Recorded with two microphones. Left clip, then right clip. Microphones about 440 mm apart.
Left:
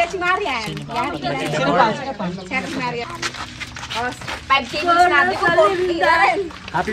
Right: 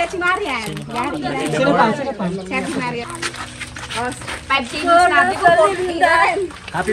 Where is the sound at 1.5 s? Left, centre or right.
Centre.